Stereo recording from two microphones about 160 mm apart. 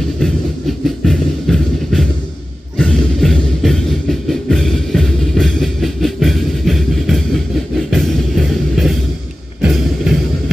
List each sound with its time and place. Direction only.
0.2 s music: centre (ahead or behind)